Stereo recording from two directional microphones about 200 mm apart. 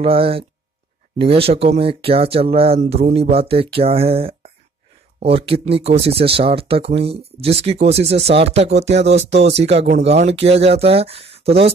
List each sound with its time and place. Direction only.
0.0 s speech: 30° right (ahead or behind)